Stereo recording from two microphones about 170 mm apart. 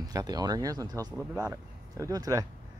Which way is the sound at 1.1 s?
5° right (ahead or behind).